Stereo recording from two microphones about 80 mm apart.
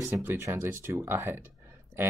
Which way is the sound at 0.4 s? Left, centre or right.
Right.